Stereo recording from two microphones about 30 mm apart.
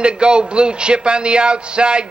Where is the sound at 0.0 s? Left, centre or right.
Right.